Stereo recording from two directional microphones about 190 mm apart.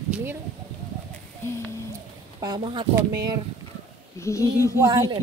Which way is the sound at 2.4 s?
20° right (ahead or behind).